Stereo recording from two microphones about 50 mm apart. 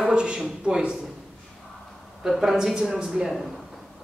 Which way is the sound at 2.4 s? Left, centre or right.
Centre.